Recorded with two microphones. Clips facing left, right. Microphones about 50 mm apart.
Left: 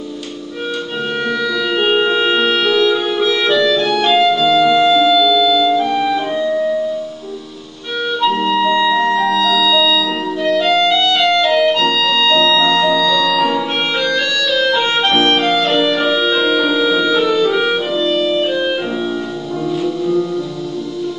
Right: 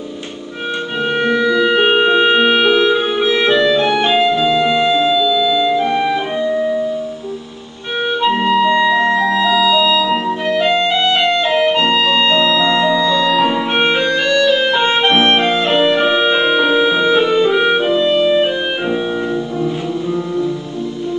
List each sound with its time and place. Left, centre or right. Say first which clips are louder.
1.2 s music: right 6 dB; right
8.2 s music: right 1 dB; right